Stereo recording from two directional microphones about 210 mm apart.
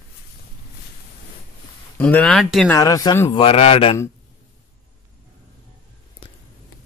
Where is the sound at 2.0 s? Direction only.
10° left (ahead or behind).